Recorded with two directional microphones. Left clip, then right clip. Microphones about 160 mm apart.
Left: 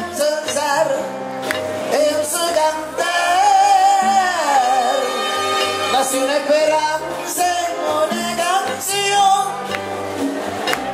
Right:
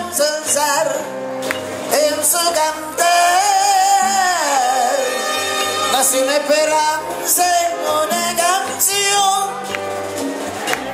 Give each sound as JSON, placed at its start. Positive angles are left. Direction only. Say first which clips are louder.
{"t": 0.2, "sound": "music", "louder": "right 1 dB", "side_deg": -45}
{"t": 1.9, "sound": "music", "louder": "right 1 dB", "side_deg": -45}
{"t": 5.9, "sound": "music", "louder": "right 3 dB", "side_deg": -45}